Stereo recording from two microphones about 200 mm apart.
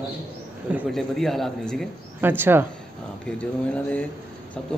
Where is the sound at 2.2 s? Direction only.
10° right (ahead or behind).